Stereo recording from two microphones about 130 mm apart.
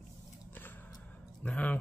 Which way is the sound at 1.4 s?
10° left (ahead or behind).